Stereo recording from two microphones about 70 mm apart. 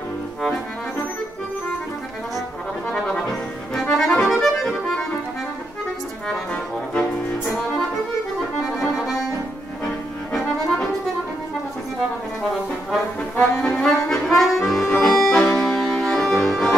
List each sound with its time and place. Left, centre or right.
2.9 s music: centre
3.9 s accordion: centre
6.2 s music: centre
8.7 s accordion: centre
13.4 s accordion: centre